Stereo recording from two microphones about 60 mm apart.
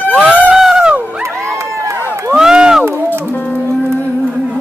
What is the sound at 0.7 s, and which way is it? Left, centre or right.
Dog, right.